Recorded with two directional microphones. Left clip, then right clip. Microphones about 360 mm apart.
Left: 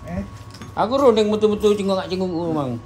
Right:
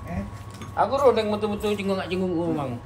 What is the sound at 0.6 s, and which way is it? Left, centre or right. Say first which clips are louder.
Speech: left 3 dB; centre.